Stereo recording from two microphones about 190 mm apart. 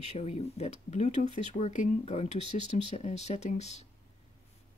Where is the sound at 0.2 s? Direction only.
35° left (ahead or behind).